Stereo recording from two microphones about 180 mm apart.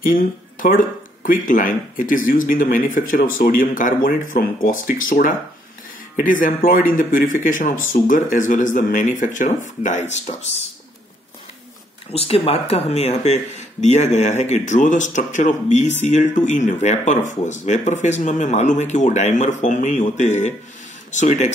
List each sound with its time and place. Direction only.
0.0 s speech: 50° left (ahead or behind)
12.1 s speech: 35° left (ahead or behind)